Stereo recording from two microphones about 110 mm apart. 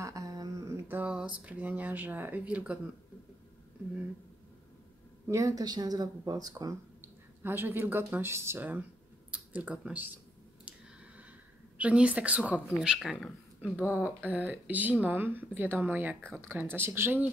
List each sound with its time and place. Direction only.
0.0 s a sound: 30° right (ahead or behind)
0.8 s speech: 15° right (ahead or behind)
5.3 s speech: 30° right (ahead or behind)
7.4 s speech: 20° right (ahead or behind)
11.8 s speech: 10° right (ahead or behind)
14.0 s speech: 15° right (ahead or behind)